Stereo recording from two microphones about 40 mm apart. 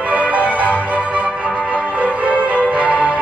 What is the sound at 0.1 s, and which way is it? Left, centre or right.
Music, right.